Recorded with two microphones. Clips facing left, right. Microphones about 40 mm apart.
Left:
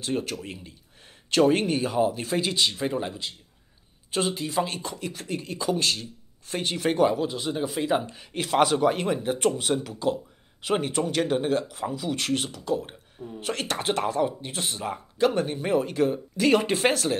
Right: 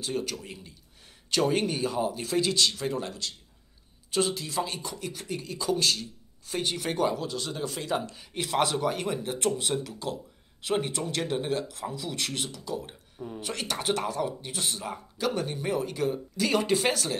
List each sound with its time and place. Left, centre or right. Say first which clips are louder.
0.0 s speech: left 3 dB; left
1.4 s speech: left 5 dB; centre
10.7 s speech: left 4 dB; left
13.2 s a sound: right 1 dB; right
13.6 s speech: left 2 dB; left